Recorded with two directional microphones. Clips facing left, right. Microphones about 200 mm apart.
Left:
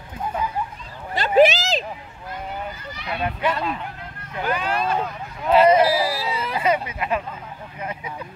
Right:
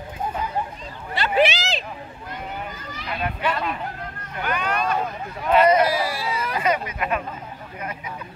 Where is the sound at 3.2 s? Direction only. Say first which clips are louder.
Left 2 dB; 25° left (ahead or behind).